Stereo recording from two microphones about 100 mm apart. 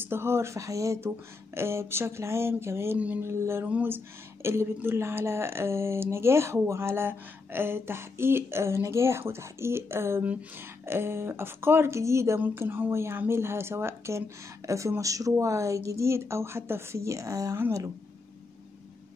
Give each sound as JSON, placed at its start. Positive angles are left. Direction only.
{"t": 0.0, "sound": "speech", "side_deg": -25}